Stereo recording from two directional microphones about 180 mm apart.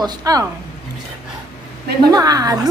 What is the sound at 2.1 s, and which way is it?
Speech, 20° right (ahead or behind).